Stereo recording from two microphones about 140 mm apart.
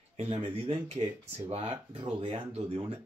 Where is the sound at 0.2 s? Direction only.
45° right (ahead or behind).